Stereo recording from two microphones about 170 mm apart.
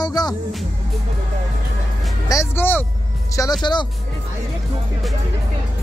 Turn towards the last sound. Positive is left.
turn(degrees=25)  # may be behind; listen again after turning